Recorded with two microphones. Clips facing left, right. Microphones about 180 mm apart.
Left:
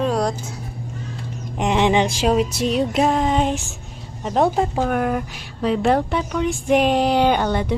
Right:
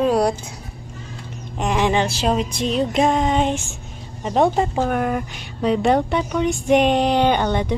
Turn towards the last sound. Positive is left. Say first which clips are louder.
# even
turn(degrees=5)  # may be behind; listen again after turning